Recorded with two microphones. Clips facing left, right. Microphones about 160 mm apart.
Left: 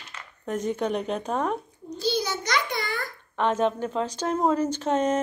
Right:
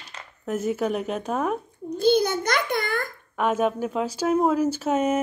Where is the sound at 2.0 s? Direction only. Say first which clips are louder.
Right 7 dB; 55° right (ahead or behind).